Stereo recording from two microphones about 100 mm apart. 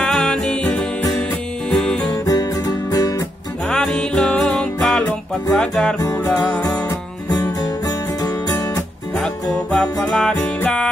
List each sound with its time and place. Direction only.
0.0 s music: 5° left (ahead or behind)
1.7 s music: 10° left (ahead or behind)
2.0 s music: 35° left (ahead or behind)
3.6 s music: 5° left (ahead or behind)
6.1 s music: 15° left (ahead or behind)
6.9 s music: 40° left (ahead or behind)
9.1 s music: 10° left (ahead or behind)